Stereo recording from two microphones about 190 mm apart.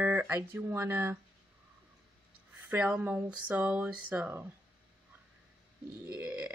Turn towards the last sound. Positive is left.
turn(degrees=-10)  # may be behind; listen again after turning